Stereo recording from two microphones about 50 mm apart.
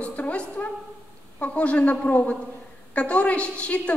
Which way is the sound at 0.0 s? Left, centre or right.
Left.